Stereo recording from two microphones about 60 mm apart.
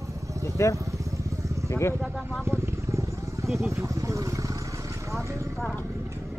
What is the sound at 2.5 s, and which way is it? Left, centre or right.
Vehicle, right.